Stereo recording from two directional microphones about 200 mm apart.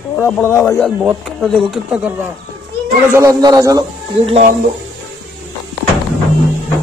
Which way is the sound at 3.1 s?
15° right (ahead or behind).